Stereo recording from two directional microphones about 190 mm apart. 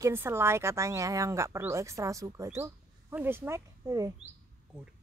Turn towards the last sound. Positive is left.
turn(degrees=-15)  # may be behind; listen again after turning